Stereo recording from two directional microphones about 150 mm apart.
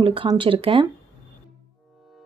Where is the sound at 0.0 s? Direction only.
35° right (ahead or behind).